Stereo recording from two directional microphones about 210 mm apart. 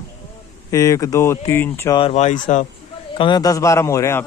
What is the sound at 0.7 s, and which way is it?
A man's voice, 15° left (ahead or behind).